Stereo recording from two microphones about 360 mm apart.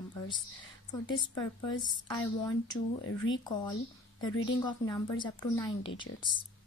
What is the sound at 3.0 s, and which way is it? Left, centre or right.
Speech, left.